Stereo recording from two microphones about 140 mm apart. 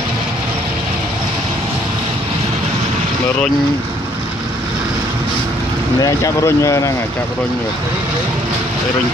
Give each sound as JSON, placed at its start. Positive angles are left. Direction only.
{"t": 5.9, "sound": "speech", "side_deg": 25}